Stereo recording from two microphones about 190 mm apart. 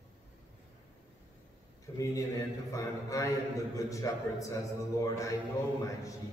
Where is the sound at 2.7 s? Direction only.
15° left (ahead or behind).